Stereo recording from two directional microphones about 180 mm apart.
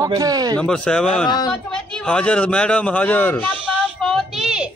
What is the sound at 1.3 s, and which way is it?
Speech, 25° left (ahead or behind).